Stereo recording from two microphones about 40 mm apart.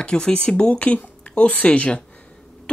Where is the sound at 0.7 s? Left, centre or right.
Left.